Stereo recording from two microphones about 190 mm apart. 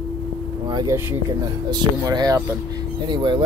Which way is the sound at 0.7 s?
20° right (ahead or behind).